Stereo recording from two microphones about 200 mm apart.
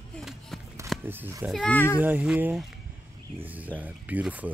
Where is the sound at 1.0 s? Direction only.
10° right (ahead or behind).